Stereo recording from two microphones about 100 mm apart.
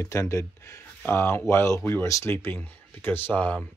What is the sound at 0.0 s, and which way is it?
Speech, 30° left (ahead or behind).